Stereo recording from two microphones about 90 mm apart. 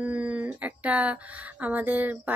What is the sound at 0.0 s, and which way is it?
Speech, 15° right (ahead or behind).